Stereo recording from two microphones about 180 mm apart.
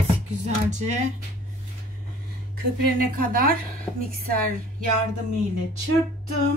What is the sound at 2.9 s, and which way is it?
Speech, 55° right (ahead or behind).